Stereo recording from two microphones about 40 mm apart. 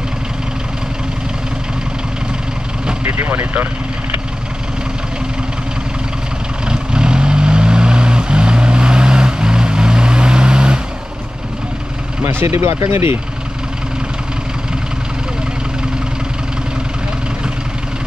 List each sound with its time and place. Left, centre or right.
3.0 s vehicle: right
6.6 s vehicle: right
12.3 s speech: right